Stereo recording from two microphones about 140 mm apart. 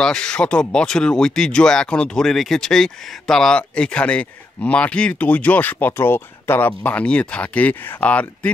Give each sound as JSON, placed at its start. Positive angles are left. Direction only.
{"t": 0.0, "sound": "speech", "side_deg": 5}